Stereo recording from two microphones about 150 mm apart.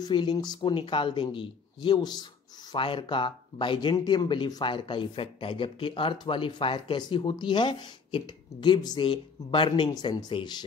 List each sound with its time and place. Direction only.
0.0 s speech: 30° left (ahead or behind)